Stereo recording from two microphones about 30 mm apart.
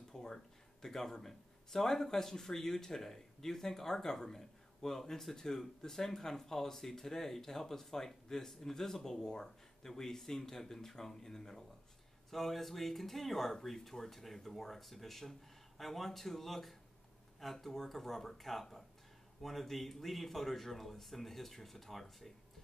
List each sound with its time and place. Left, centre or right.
0.1 s a sound: centre
0.8 s speech: centre
12.3 s speech: centre